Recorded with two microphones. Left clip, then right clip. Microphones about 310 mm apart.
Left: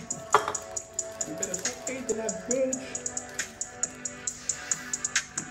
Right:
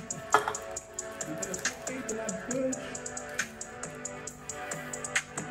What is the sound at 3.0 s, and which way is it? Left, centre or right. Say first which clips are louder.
Music: even; right.